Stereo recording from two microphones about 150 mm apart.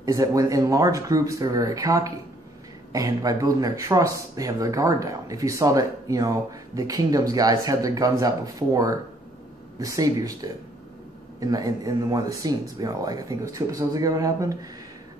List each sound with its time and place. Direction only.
0.0 s speech: 20° right (ahead or behind)